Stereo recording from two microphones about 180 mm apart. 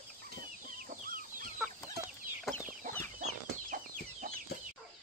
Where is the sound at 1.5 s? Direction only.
5° right (ahead or behind).